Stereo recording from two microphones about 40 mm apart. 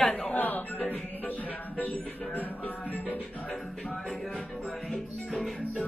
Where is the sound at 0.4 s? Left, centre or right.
Left.